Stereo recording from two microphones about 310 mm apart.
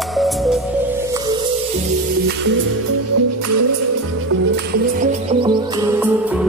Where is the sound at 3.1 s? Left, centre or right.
Right.